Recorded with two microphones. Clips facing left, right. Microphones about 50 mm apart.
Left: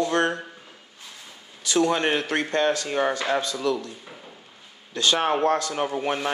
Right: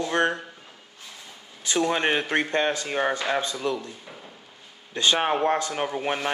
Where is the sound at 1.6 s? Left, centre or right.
Right.